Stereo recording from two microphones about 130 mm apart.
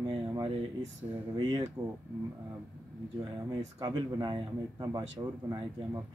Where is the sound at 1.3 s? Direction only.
35° right (ahead or behind).